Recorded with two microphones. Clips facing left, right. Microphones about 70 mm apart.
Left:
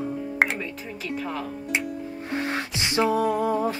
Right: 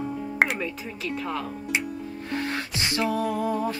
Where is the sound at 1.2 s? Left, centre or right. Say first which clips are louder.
Even; centre.